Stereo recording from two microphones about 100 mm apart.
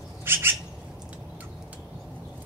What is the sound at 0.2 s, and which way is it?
Squawk, 25° right (ahead or behind).